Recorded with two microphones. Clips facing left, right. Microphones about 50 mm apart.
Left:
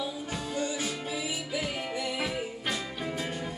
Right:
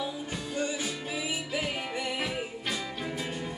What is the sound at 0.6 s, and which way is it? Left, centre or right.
Music, right.